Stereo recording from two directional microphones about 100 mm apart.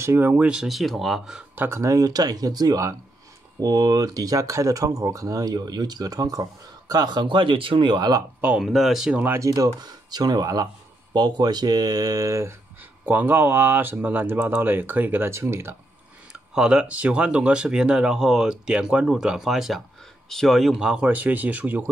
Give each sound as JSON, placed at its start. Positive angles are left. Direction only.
{"t": 0.0, "sound": "speech", "side_deg": -25}
{"t": 0.3, "sound": "speech", "side_deg": -10}
{"t": 1.5, "sound": "speech", "side_deg": -20}
{"t": 1.8, "sound": "speech", "side_deg": -35}
{"t": 8.5, "sound": "speech", "side_deg": 0}
{"t": 9.1, "sound": "speech", "side_deg": -20}
{"t": 9.6, "sound": "speech", "side_deg": -40}
{"t": 13.0, "sound": "speech", "side_deg": -20}
{"t": 16.5, "sound": "speech", "side_deg": -10}